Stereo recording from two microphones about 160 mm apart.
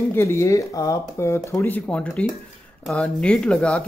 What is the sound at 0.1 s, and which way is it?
Speech, 15° left (ahead or behind).